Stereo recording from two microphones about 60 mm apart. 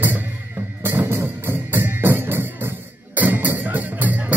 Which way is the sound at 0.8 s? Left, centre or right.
Right.